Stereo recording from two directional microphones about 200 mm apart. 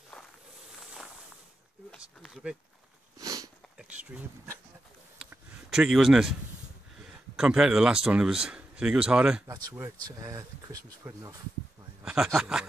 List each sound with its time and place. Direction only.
2.0 s speech: centre (ahead or behind)
3.2 s sniff: 15° right (ahead or behind)
3.7 s speech: 5° right (ahead or behind)
5.2 s a sound: 5° right (ahead or behind)
7.3 s speech: 5° right (ahead or behind)
9.5 s speech: 15° right (ahead or behind)
12.0 s a sound: 5° right (ahead or behind)
12.4 s speech: 5° right (ahead or behind)